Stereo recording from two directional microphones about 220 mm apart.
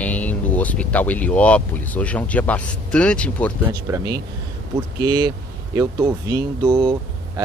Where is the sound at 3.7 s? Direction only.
15° right (ahead or behind).